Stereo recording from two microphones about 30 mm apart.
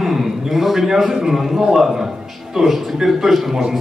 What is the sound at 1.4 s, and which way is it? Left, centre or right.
A woman's voice, centre.